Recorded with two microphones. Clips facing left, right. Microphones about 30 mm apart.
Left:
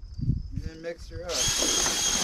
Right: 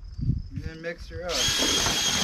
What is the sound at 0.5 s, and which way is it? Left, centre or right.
Speech, right.